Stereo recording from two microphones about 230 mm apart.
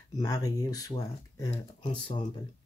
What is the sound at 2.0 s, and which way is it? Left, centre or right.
Speech, left.